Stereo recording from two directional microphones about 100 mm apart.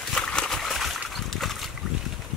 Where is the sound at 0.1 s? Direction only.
5° left (ahead or behind).